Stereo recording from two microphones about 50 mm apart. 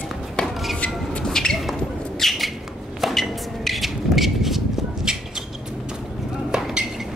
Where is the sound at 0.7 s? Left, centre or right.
Left.